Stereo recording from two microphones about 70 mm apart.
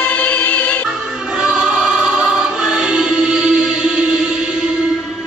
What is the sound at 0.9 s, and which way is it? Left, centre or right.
Music, centre.